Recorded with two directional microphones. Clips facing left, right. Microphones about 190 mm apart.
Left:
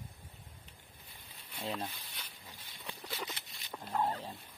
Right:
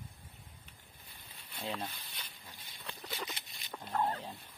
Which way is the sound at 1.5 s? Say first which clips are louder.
Left 1 dB; centre (ahead or behind).